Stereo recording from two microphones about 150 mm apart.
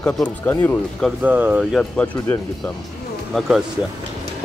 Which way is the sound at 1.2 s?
10° right (ahead or behind).